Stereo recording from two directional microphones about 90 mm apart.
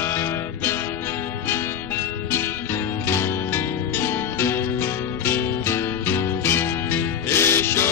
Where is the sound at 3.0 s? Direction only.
30° left (ahead or behind).